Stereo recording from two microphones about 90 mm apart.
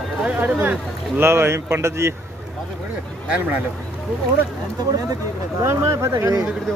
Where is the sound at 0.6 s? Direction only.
25° right (ahead or behind).